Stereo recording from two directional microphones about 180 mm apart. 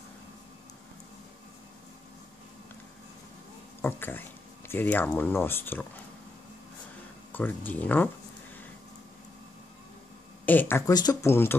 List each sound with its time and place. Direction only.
3.8 s speech: 10° left (ahead or behind)
7.3 s speech: 10° left (ahead or behind)
10.4 s speech: 10° left (ahead or behind)
10.9 s speech: 20° left (ahead or behind)